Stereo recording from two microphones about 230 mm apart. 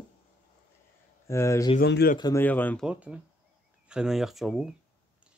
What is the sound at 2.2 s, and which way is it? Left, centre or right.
Speech, centre.